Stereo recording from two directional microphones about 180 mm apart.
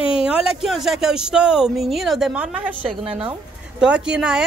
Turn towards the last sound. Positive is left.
turn(degrees=-5)  # may be behind; listen again after turning